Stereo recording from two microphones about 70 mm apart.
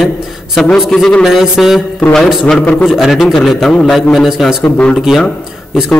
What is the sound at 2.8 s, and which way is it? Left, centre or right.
A man's voice, centre.